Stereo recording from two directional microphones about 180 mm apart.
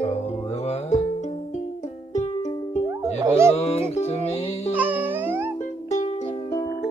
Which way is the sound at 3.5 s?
35° left (ahead or behind).